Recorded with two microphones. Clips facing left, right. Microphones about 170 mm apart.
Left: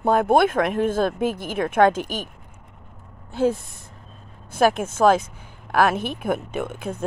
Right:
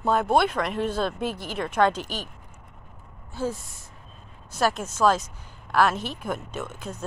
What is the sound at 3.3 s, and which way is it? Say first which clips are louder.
Speech: left 8 dB; 60° left (ahead or behind).